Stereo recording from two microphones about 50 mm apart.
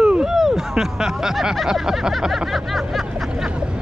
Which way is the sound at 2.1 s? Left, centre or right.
Centre.